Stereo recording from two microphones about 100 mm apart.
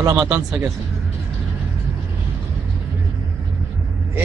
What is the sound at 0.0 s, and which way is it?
Speech, 25° right (ahead or behind).